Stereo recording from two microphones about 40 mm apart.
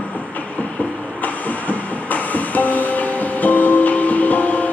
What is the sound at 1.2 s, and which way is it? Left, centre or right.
Music, left.